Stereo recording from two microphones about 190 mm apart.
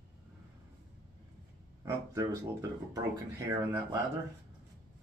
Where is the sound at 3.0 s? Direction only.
15° right (ahead or behind).